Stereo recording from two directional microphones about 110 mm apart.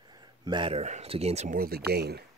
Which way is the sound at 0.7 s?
80° right.